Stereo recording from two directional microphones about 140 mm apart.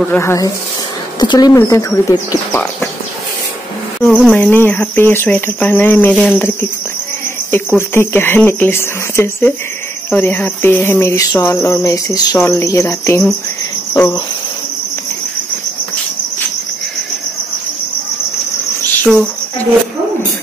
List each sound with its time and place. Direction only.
0.1 s speech: 20° left (ahead or behind)
1.2 s speech: 30° left (ahead or behind)
4.3 s speech: 10° left (ahead or behind)